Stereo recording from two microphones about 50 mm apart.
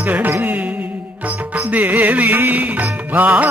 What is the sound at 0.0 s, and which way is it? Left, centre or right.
Music, right.